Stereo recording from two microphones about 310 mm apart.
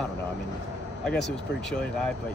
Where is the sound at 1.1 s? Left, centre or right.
Centre.